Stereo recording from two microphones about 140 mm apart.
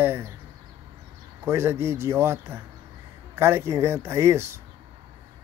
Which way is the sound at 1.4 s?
20° right (ahead or behind).